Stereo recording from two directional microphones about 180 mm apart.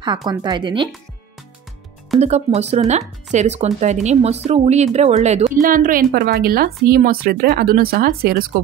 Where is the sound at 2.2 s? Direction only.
40° right (ahead or behind); by 8.4 s 55° right (ahead or behind).